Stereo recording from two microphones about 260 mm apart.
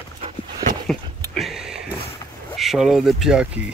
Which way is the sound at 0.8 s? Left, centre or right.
Centre.